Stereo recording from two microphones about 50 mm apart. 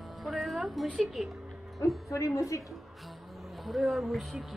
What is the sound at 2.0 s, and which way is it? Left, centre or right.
Speech, left.